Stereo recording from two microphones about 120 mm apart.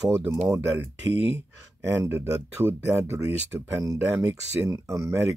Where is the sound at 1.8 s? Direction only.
20° right (ahead or behind).